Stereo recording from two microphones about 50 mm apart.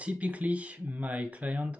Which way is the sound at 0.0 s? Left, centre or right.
Right.